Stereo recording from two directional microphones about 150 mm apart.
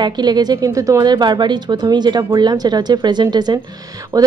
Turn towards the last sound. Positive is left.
turn(degrees=-25)  # may be behind; listen again after turning